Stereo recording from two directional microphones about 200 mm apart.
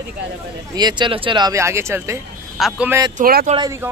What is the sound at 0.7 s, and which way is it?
Speech, 20° right (ahead or behind).